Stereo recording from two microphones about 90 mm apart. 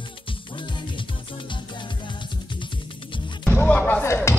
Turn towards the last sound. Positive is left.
turn(degrees=25)  # may be behind; listen again after turning